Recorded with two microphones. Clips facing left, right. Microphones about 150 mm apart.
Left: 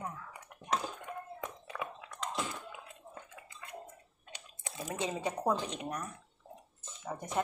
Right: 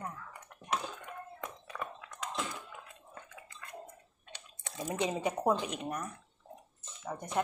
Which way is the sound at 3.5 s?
20° left (ahead or behind).